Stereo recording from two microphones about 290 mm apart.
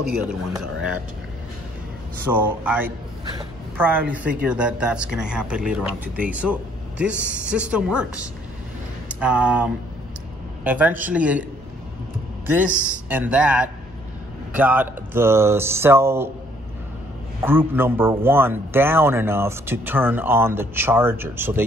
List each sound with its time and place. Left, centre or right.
2.2 s a man's voice: centre
12.4 s a woman's voice: centre
17.4 s a man's voice: centre